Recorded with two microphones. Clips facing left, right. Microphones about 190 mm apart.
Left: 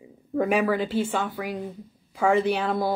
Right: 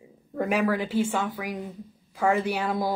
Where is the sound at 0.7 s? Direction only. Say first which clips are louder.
Left 1 dB; 10° right (ahead or behind).